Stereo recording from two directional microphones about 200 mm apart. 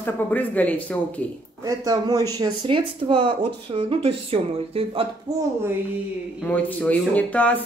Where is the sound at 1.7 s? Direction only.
20° right (ahead or behind).